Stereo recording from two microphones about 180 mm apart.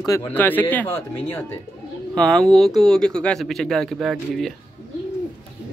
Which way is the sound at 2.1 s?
5° left (ahead or behind).